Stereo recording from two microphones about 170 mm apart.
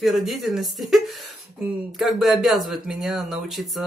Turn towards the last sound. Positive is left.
turn(degrees=0)  # may be behind; listen again after turning